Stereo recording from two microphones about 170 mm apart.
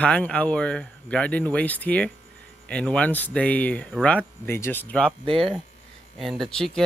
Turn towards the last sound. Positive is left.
turn(degrees=5)  # may be behind; listen again after turning